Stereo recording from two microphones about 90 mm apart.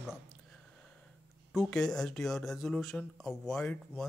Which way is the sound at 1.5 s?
5° left (ahead or behind).